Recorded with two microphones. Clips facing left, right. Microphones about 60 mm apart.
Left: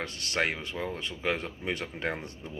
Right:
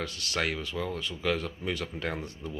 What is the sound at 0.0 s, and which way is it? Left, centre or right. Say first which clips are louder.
Speech: left 1 dB; left.